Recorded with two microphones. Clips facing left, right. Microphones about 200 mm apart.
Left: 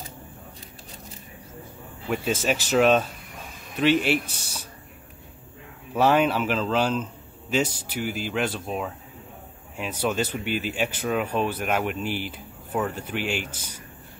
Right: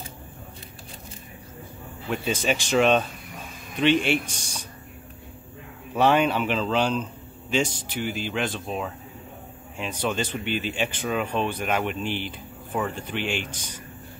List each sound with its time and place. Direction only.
2.0 s speech: 5° left (ahead or behind)
5.9 s speech: 5° left (ahead or behind)